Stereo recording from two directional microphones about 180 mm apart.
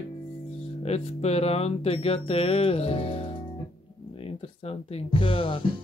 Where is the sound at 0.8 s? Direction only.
35° left (ahead or behind).